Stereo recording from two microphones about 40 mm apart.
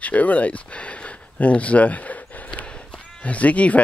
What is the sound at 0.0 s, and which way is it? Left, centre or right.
Speech, left.